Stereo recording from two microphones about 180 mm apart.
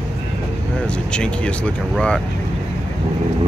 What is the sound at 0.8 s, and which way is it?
Speech, 5° left (ahead or behind).